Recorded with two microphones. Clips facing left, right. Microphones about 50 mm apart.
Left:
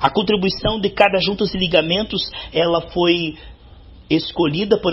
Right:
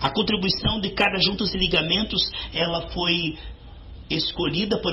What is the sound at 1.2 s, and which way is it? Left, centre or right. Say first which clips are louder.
Speech: left 5 dB; centre.